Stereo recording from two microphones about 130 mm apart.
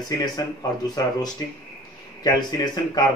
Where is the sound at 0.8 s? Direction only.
30° left (ahead or behind).